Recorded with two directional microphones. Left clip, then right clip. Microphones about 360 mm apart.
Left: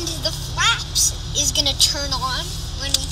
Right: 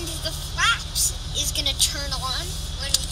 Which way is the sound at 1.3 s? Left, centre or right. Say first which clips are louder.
Left 5 dB; left.